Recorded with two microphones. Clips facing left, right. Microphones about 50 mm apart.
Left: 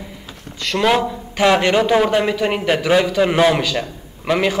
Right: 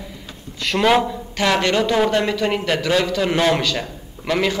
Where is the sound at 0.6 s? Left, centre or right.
Centre.